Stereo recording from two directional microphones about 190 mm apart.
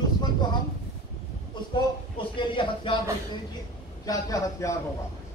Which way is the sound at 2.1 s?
25° left (ahead or behind).